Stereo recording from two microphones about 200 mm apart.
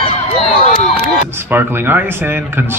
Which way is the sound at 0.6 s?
35° left (ahead or behind).